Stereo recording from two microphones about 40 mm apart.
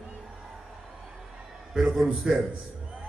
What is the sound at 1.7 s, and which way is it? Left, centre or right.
Speech, centre.